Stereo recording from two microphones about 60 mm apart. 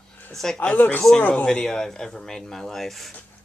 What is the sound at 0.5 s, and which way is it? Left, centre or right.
Speech, left.